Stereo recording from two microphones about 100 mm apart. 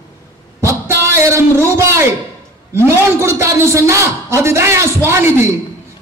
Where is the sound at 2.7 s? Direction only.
25° right (ahead or behind).